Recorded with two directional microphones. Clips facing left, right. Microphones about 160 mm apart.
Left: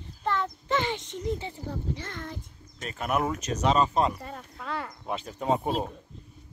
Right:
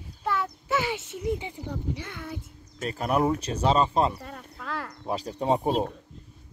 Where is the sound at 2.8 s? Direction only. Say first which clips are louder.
Right 3 dB; 35° right (ahead or behind).